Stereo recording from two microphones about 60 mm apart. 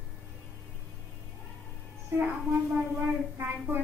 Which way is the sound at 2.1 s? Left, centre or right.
Right.